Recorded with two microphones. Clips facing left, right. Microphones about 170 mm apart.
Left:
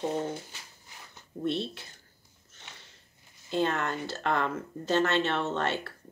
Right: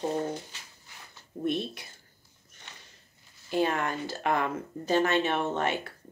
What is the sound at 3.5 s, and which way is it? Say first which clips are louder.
Speech: right 1 dB; 10° right (ahead or behind).